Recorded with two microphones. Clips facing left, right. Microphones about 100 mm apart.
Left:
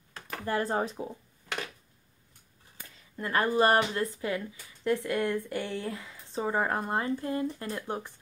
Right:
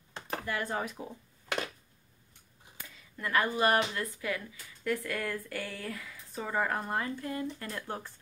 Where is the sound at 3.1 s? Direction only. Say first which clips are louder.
Left 3 dB; 30° left (ahead or behind).